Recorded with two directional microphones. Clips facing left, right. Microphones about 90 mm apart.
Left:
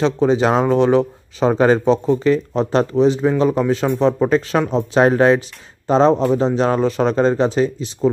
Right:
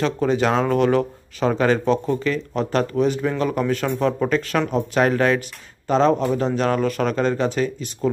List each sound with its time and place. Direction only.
0.0 s speech: 25° left (ahead or behind)